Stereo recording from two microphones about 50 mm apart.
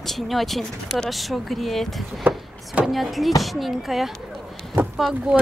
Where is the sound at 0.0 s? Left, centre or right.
Centre.